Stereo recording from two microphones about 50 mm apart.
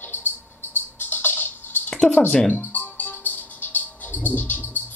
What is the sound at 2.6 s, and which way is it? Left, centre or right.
Music, left.